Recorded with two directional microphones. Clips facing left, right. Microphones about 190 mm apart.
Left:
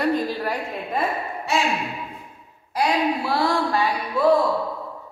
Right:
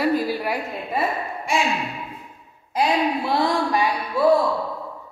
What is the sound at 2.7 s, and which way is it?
Speech, 20° right (ahead or behind).